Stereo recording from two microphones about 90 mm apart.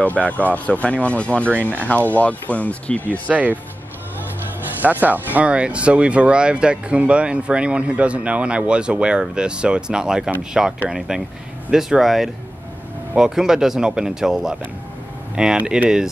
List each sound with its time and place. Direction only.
0.0 s speech: 15° left (ahead or behind)
3.3 s speech: 15° right (ahead or behind)
4.8 s speech: 20° right (ahead or behind)